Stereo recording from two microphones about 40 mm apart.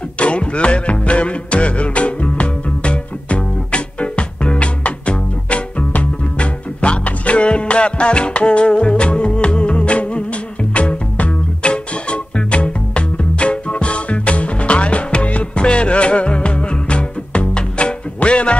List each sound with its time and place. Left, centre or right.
0.2 s music: left